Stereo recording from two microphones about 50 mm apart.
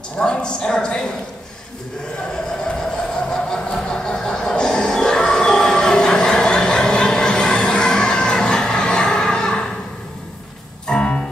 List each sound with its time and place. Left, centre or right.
0.2 s a woman's voice: centre
2.7 s a sound: centre
10.9 s music: centre